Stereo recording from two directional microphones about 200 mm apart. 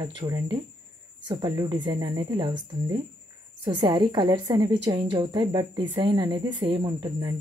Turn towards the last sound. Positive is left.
turn(degrees=-25)  # may be behind; listen again after turning